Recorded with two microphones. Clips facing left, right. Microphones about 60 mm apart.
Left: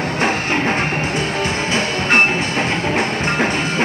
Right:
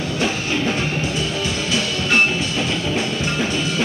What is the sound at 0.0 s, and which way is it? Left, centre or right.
Music, left.